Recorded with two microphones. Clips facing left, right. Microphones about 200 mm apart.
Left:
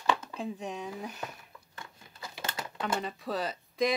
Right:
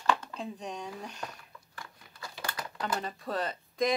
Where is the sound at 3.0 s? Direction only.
Centre (ahead or behind).